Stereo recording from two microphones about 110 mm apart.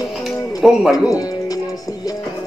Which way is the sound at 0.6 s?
Centre (ahead or behind).